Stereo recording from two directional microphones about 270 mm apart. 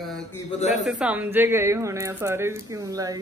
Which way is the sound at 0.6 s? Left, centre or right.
Left.